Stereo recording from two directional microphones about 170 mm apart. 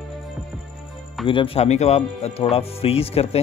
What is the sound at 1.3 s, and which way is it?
Speech, 30° left (ahead or behind).